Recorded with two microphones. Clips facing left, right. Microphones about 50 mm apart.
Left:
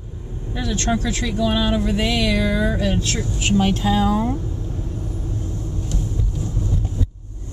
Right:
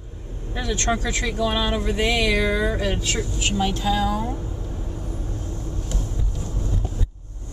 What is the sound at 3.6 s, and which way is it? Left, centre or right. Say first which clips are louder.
Speech: left 2 dB; left.